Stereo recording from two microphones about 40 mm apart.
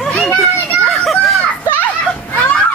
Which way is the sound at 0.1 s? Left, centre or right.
Left.